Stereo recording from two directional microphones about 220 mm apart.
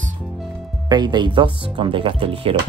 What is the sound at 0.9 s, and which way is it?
Speech, 20° right (ahead or behind).